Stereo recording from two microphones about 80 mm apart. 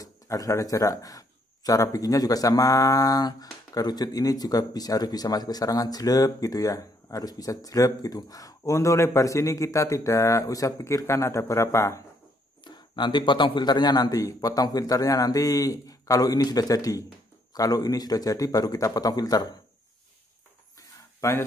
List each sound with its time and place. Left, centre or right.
0.0 s speech: left
12.6 s speech: left
20.8 s a sound: left